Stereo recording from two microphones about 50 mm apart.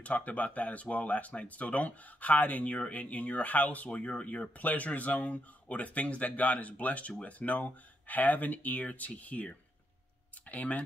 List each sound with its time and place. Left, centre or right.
0.0 s speech: left
10.5 s speech: left